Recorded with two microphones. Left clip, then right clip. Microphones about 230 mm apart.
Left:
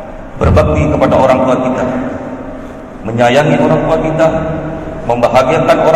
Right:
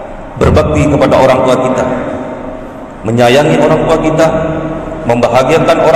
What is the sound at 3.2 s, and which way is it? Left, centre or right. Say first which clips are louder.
Speech: right 2 dB; right.